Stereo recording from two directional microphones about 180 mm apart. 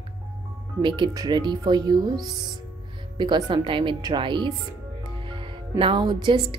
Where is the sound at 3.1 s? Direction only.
25° right (ahead or behind).